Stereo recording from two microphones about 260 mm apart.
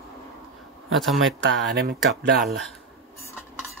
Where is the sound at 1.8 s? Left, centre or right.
Right.